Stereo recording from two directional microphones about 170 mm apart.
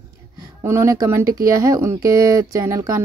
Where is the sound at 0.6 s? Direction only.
15° right (ahead or behind).